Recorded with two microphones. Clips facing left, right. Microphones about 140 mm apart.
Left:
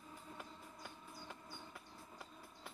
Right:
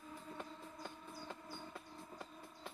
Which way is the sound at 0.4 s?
25° right (ahead or behind).